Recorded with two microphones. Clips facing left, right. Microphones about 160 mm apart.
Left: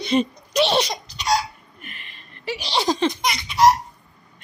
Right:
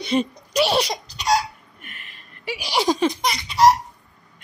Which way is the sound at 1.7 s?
Centre (ahead or behind).